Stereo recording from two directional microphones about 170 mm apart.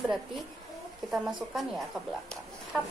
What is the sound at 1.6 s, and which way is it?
Speech, centre (ahead or behind).